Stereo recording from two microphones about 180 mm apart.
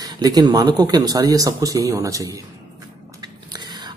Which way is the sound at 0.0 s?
20° right (ahead or behind).